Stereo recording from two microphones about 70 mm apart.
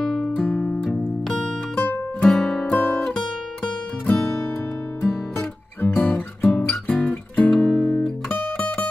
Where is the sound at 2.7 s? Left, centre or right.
Centre.